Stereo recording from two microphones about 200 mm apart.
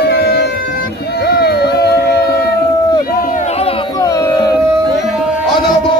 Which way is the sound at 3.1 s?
40° left (ahead or behind).